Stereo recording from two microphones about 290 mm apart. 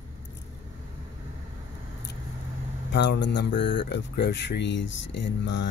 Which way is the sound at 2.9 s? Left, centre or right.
Left.